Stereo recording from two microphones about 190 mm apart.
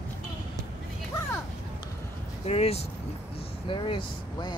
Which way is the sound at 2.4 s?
30° left (ahead or behind).